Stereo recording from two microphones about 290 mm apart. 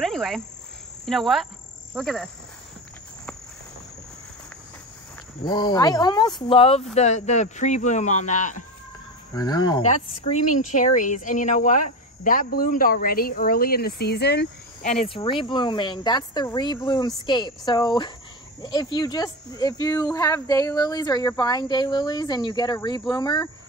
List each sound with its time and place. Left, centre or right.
0.0 s cricket: centre
1.0 s speech: centre
5.4 s speech: centre
9.3 s speech: centre; by 14.9 s left
15.0 s speech: centre